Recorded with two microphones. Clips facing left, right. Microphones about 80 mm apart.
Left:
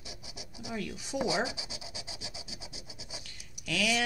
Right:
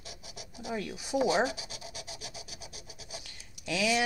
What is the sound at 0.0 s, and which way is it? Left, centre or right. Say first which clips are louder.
Scratch: even; centre.